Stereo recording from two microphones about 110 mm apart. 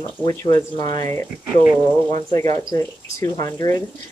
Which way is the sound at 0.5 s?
40° left (ahead or behind).